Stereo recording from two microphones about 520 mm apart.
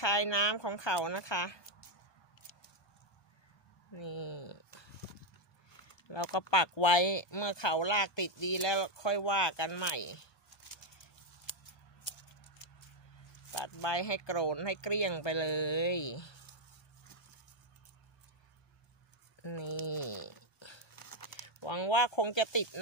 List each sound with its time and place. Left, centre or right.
0.0 s speech: left
2.5 s a sound: left
3.9 s a sound: left
6.2 s speech: left
6.5 s speech: left
11.5 s scissors: left
12.1 s a sound: left
13.5 s speech: left
19.4 s speech: left
19.9 s a sound: left
20.9 s crumpling: left
21.5 s speech: left